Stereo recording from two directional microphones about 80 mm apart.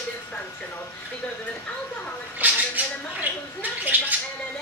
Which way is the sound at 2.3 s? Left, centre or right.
Right.